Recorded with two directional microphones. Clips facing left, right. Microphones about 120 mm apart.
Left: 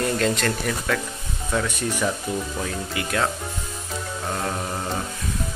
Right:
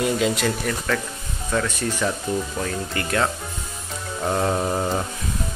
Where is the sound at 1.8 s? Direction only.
15° left (ahead or behind).